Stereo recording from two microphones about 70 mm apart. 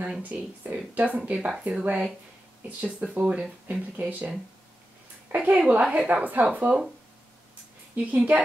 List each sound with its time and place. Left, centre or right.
0.2 s speech: right
5.3 s a woman's voice: right
7.9 s a woman's voice: right